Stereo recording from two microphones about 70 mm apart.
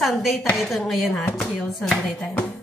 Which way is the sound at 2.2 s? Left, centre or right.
Centre.